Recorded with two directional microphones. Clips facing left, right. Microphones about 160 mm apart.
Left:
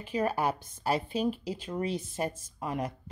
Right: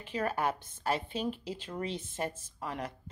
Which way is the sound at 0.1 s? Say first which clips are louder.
Left 3 dB; 10° left (ahead or behind).